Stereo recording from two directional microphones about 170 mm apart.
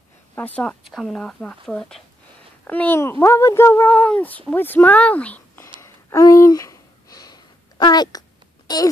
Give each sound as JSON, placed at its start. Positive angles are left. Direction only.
{"t": 0.6, "sound": "speech", "side_deg": 5}
{"t": 5.8, "sound": "a sound", "side_deg": 20}
{"t": 8.7, "sound": "speech", "side_deg": 25}